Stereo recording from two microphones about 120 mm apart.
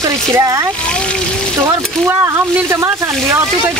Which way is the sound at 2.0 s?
20° right (ahead or behind).